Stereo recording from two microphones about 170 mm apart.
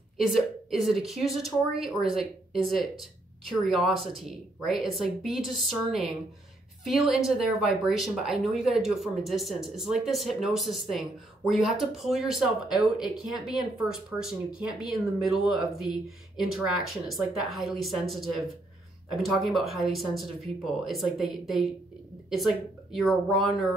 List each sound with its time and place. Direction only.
0.7 s speech: centre (ahead or behind)